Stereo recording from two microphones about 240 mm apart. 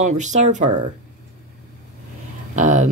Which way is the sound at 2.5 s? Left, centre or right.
Right.